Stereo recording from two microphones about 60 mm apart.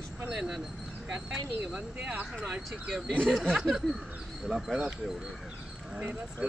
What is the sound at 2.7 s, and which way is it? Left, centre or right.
Speech, centre.